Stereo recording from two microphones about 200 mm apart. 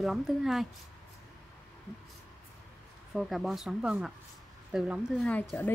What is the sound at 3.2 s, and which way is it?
Speech, centre (ahead or behind).